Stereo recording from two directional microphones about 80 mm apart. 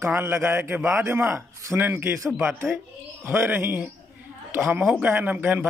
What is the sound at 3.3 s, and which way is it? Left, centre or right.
A woman's voice, right.